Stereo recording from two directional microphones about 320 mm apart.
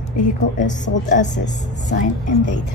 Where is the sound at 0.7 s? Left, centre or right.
Left.